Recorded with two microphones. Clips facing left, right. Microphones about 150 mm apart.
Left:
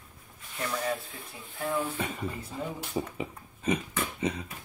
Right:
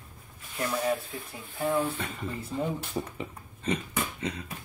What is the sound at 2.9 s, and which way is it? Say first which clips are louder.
Speech: left 1 dB; 10° left (ahead or behind).